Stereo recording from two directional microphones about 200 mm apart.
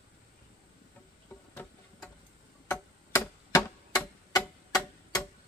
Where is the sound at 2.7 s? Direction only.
10° left (ahead or behind).